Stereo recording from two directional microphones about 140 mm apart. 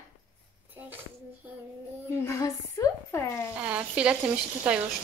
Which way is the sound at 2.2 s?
20° left (ahead or behind).